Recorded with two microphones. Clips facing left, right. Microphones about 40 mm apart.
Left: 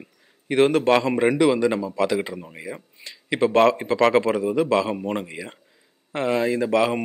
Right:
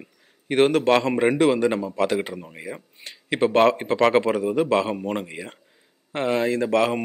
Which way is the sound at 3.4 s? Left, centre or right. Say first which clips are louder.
Even; centre.